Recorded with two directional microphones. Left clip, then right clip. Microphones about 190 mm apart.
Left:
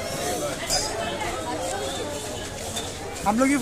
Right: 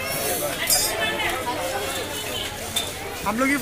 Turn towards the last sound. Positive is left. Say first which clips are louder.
# left 1 dB
turn(degrees=60)  # may be behind; listen again after turning